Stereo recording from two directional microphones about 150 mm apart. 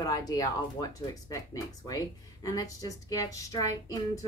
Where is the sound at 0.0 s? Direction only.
25° left (ahead or behind).